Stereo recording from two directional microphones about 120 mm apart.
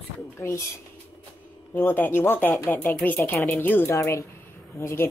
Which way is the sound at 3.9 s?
25° left (ahead or behind).